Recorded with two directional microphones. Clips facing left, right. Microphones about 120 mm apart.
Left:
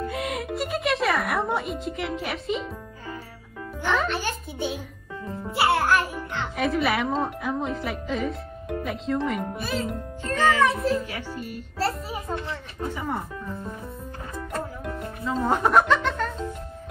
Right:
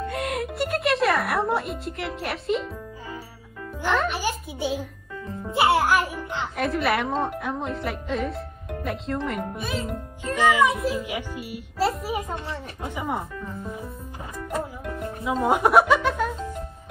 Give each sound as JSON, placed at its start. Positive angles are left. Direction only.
{"t": 0.0, "sound": "speech", "side_deg": 0}
{"t": 3.8, "sound": "speech", "side_deg": 0}
{"t": 5.5, "sound": "a child's voice", "side_deg": -20}
{"t": 6.5, "sound": "speech", "side_deg": 0}
{"t": 10.2, "sound": "speech", "side_deg": -15}
{"t": 12.4, "sound": "speech", "side_deg": -15}
{"t": 14.5, "sound": "music", "side_deg": 0}
{"t": 15.4, "sound": "music", "side_deg": -10}